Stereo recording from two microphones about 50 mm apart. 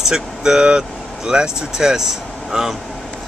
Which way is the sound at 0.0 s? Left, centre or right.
Centre.